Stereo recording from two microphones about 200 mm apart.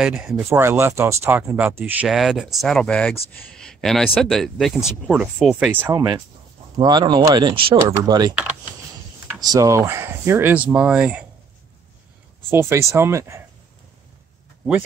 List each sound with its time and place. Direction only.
0.0 s speech: 5° right (ahead or behind); by 8.4 s 20° right (ahead or behind)
9.4 s speech: 15° right (ahead or behind)
12.4 s speech: 10° right (ahead or behind)